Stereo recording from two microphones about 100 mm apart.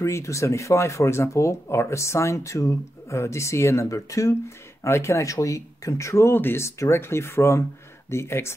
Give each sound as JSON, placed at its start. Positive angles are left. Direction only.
{"t": 0.0, "sound": "speech", "side_deg": 30}